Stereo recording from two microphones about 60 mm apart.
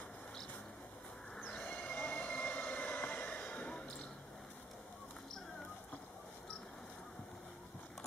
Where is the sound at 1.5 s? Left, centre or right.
Centre.